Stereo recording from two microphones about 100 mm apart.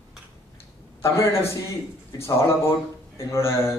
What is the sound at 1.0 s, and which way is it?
A man's voice, 30° left (ahead or behind).